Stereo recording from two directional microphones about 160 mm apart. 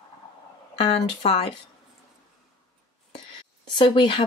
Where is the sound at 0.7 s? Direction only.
40° left (ahead or behind).